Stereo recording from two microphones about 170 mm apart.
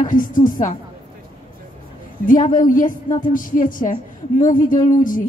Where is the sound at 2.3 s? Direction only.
50° left (ahead or behind).